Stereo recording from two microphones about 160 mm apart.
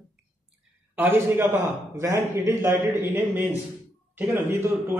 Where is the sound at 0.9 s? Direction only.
15° right (ahead or behind).